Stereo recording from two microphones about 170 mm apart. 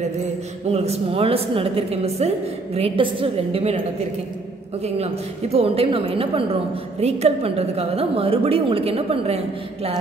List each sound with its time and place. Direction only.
0.7 s a woman's voice: 40° right (ahead or behind)
4.8 s a woman's voice: 40° right (ahead or behind)